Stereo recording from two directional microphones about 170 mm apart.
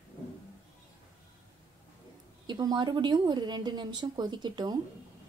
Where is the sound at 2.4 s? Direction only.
25° right (ahead or behind).